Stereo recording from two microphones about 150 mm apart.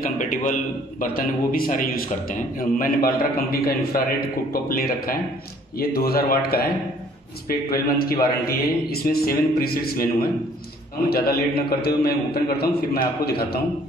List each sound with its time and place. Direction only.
0.2 s a man's voice: 65° left (ahead or behind)
5.8 s a man's voice: 90° left
11.1 s a man's voice: 90° left